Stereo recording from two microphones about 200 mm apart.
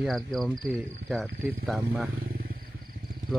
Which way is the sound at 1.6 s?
5° right (ahead or behind).